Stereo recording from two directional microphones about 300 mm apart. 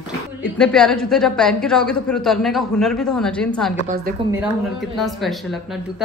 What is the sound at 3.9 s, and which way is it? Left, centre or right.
Speech, right.